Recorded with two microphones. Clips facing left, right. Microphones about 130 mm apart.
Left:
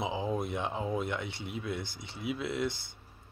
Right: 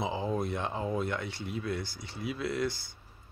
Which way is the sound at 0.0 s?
15° left (ahead or behind).